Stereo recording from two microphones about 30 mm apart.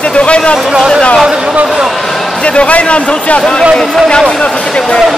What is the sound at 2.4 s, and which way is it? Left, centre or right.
Speech, left.